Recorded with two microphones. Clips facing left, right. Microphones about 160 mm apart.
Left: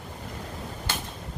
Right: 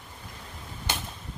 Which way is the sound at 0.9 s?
15° right (ahead or behind).